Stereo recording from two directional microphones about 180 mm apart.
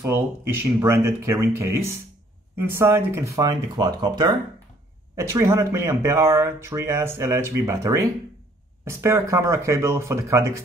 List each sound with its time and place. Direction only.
0.7 s speech: 15° right (ahead or behind)